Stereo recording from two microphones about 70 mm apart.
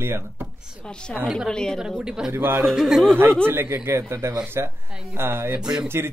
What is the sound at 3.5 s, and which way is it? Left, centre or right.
Speech, right.